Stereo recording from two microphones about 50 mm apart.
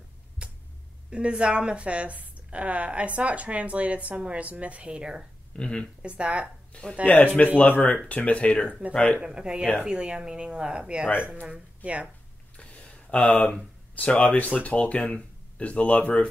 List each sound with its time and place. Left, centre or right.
0.4 s a sound: right
1.1 s a woman's voice: right
5.6 s speech: centre
6.0 s a woman's voice: right
6.7 s speech: left
9.2 s a woman's voice: centre
12.5 s a sound: left
13.2 s speech: left